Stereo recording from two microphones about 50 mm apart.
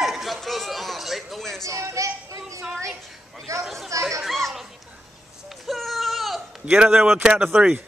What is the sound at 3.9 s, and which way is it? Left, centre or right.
Children playing, right.